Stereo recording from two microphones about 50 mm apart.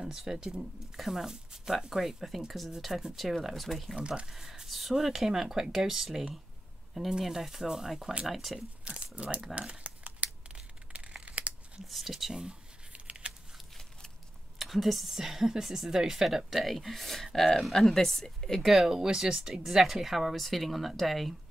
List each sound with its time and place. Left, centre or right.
0.0 s speech: centre
2.8 s speech: centre
3.4 s speech: centre
3.9 s speech: centre
8.5 s speech: right
9.6 s crumpling: right
11.9 s speech: centre
12.4 s a sound: right
14.6 s speech: centre